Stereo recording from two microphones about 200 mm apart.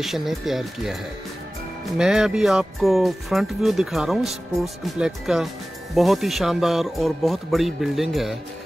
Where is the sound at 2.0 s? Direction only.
5° right (ahead or behind).